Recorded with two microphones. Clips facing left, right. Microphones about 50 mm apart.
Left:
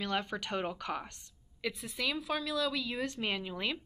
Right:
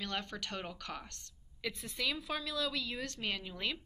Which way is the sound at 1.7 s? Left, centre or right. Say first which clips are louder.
Left 2 dB; centre.